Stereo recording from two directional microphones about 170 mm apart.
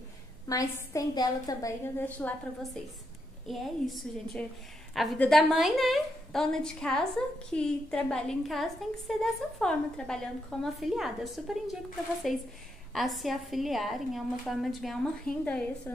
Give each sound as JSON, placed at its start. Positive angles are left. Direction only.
{"t": 0.5, "sound": "a woman's voice", "side_deg": 20}